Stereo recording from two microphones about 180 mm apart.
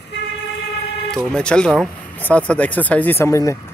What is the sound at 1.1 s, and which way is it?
Speech, 5° left (ahead or behind).